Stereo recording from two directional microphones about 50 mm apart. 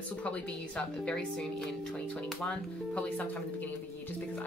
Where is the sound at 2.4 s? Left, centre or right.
Left.